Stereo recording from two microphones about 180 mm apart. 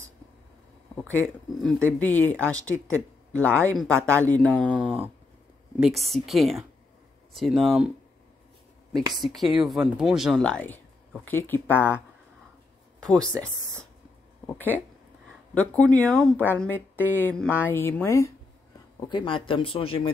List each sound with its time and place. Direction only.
1.2 s speech: centre (ahead or behind)
4.6 s speech: 5° right (ahead or behind)
9.2 s speech: centre (ahead or behind)
13.0 s speech: 5° left (ahead or behind)
19.0 s speech: 25° left (ahead or behind)